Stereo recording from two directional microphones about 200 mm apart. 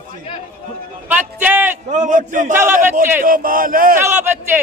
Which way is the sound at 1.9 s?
40° right (ahead or behind).